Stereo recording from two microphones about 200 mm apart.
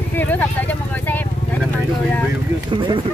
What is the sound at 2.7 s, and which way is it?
Speech, 25° right (ahead or behind).